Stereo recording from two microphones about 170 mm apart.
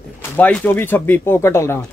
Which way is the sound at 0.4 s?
10° left (ahead or behind).